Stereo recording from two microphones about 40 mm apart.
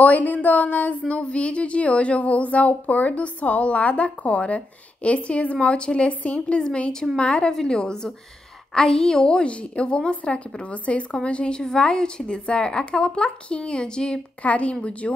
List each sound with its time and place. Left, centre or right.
0.0 s speech: left
6.6 s a woman's voice: left
14.4 s speech: left